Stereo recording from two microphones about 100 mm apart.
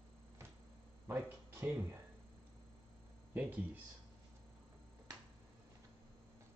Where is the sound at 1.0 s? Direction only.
25° right (ahead or behind).